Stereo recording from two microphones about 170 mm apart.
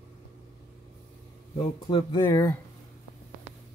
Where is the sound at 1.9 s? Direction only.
25° left (ahead or behind).